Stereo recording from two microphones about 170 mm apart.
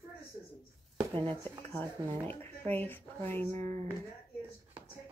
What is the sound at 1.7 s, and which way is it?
Speech, 10° left (ahead or behind).